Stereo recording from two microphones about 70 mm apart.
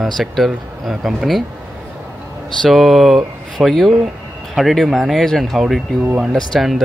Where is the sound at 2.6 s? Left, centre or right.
Centre.